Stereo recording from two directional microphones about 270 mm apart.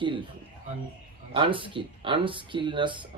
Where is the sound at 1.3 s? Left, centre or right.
Centre.